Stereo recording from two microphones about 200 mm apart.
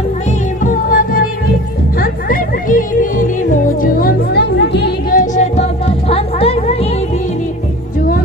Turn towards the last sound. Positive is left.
turn(degrees=30)  # may be behind; listen again after turning